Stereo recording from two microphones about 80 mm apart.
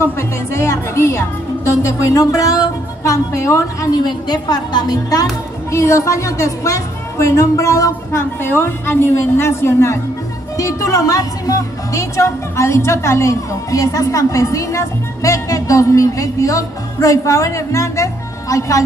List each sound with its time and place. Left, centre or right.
0.0 s a woman's voice: left
3.9 s a woman's voice: left